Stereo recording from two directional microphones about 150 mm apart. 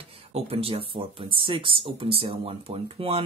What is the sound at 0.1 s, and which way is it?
Speech, 40° right (ahead or behind).